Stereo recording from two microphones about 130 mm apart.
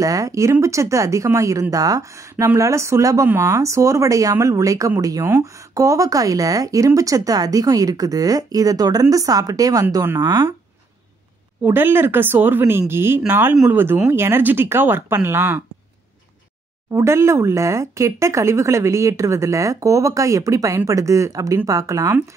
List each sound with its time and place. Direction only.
0.0 s speech: 25° right (ahead or behind)
11.6 s speech: 15° right (ahead or behind)
16.9 s speech: 20° right (ahead or behind)